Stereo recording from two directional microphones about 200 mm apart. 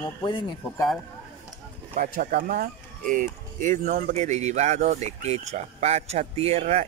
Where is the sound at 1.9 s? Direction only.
45° right (ahead or behind).